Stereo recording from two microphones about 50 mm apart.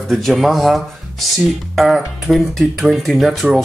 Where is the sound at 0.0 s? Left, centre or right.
Centre.